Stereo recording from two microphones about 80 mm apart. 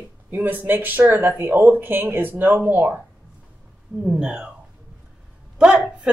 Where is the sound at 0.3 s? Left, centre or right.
Right.